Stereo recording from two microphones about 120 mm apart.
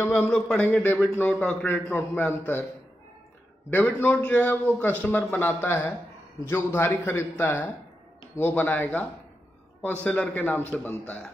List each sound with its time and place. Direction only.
0.0 s a man's voice: 15° left (ahead or behind)
3.7 s a man's voice: 15° left (ahead or behind)
10.0 s a man's voice: 15° left (ahead or behind)